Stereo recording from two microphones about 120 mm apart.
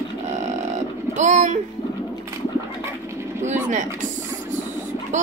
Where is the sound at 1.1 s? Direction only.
85° right.